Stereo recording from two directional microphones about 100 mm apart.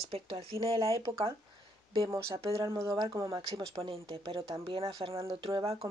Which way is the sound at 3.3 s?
65° right (ahead or behind).